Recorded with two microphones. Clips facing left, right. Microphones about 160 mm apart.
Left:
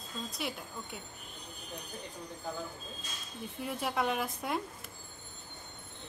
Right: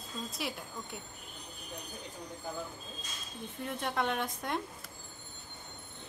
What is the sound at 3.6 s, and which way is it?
Speech, 5° left (ahead or behind).